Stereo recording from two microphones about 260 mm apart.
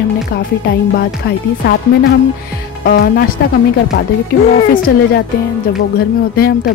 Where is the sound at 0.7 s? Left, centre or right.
Left.